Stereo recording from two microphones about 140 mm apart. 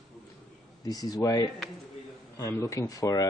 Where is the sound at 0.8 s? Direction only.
25° left (ahead or behind).